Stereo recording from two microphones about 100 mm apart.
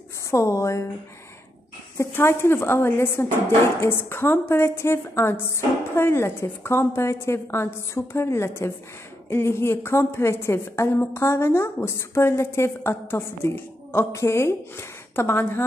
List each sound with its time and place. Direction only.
0.3 s a woman's voice: 30° left (ahead or behind)
2.0 s speech: 25° left (ahead or behind)